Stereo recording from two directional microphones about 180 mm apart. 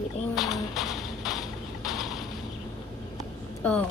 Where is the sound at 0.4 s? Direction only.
Centre (ahead or behind).